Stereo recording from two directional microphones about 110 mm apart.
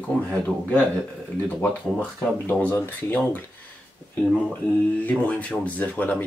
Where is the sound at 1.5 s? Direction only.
15° left (ahead or behind).